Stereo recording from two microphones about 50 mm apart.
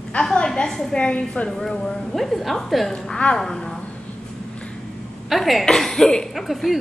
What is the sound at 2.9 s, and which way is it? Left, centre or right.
Speech, centre.